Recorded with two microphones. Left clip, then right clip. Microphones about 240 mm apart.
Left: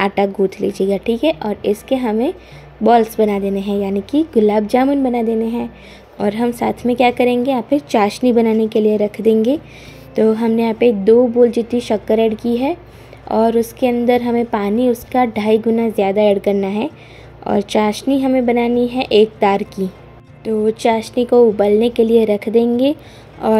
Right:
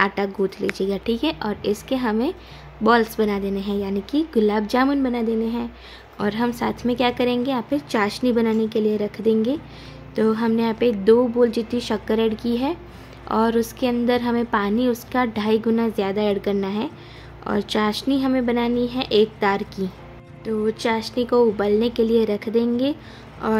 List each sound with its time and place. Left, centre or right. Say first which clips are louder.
0.0 s a woman's voice: left 5 dB; centre